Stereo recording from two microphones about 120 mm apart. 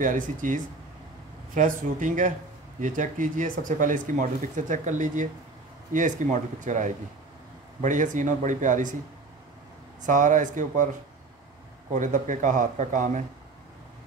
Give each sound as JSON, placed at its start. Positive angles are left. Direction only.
{"t": 0.0, "sound": "speech", "side_deg": -90}
{"t": 10.0, "sound": "speech", "side_deg": -90}
{"t": 11.9, "sound": "speech", "side_deg": -90}